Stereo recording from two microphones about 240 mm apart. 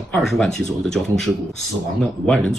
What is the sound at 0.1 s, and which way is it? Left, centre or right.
Speech, centre.